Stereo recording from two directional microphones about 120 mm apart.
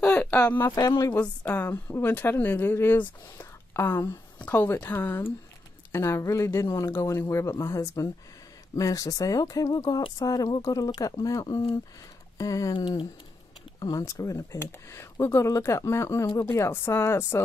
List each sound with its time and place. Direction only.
0.0 s a sound: 10° left (ahead or behind)
0.7 s speech: 30° left (ahead or behind)
1.1 s a woman's voice: 15° left (ahead or behind)
12.7 s speech: 45° left (ahead or behind)
13.7 s speech: 30° left (ahead or behind)